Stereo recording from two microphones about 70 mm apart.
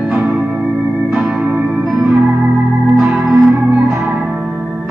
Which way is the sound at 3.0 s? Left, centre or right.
Right.